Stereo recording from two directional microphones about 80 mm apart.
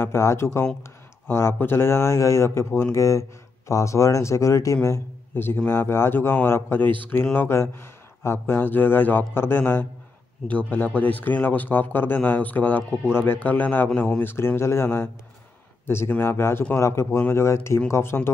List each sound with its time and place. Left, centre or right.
0.0 s a man's voice: left; by 14.2 s centre
14.2 s speech: left
16.1 s speech: left